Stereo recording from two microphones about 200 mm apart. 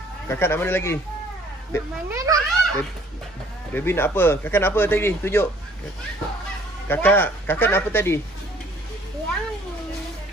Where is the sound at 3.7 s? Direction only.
10° left (ahead or behind).